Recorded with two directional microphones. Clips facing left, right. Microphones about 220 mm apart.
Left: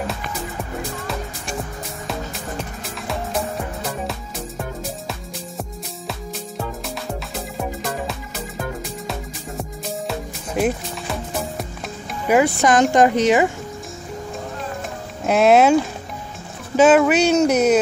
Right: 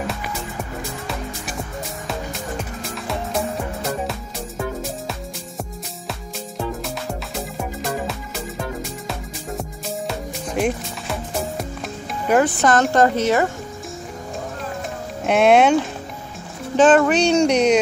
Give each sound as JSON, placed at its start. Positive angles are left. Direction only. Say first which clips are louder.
{"t": 3.1, "sound": "music", "louder": "even", "side_deg": 0}
{"t": 7.3, "sound": "music", "louder": "even", "side_deg": 0}
{"t": 9.6, "sound": "music", "louder": "left 2 dB", "side_deg": 0}
{"t": 12.3, "sound": "speech", "louder": "left 1 dB", "side_deg": 10}
{"t": 15.2, "sound": "speech", "louder": "left 1 dB", "side_deg": 0}